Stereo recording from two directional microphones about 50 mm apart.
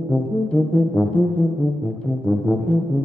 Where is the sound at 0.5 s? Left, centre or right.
Left.